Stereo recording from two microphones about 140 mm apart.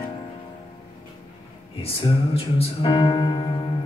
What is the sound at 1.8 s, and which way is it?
Music, 40° left (ahead or behind).